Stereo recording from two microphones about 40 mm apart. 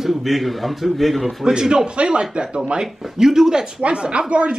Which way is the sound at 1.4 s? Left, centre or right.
Centre.